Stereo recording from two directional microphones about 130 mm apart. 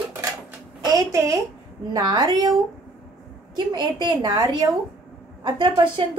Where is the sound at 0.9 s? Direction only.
25° right (ahead or behind).